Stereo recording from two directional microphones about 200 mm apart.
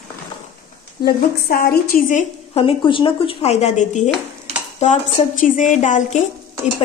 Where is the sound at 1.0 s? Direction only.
50° left (ahead or behind).